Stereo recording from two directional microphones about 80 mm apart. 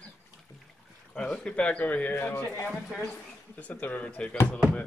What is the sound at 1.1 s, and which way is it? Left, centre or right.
Speech, centre.